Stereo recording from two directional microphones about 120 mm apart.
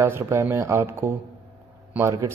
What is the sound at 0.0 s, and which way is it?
A man's voice, 20° right (ahead or behind).